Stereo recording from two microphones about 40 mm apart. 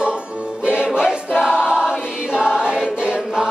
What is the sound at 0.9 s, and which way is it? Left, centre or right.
Choir, centre.